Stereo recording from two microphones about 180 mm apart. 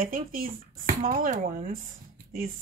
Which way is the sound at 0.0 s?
50° right (ahead or behind).